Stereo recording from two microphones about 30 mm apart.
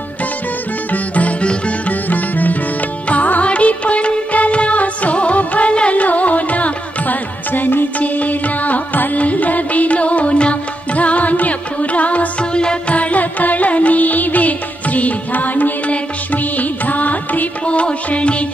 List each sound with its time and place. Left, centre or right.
0.9 s music: left
1.9 s music: left
3.4 s music: left
5.4 s music: left
5.7 s music: left
5.9 s music: left
8.0 s music: left
9.2 s music: left
11.0 s music: left
12.4 s music: left
12.9 s music: left
16.5 s music: left
17.6 s music: left